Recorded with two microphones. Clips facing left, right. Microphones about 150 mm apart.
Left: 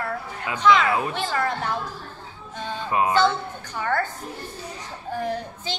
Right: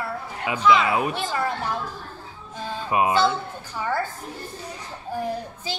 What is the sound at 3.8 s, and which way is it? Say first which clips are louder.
Speech: left 1 dB; 5° right (ahead or behind).